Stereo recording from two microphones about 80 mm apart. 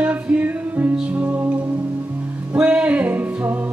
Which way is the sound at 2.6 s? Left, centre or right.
Centre.